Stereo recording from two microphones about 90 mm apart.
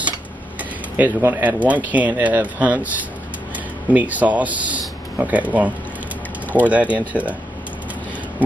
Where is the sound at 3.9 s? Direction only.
15° right (ahead or behind).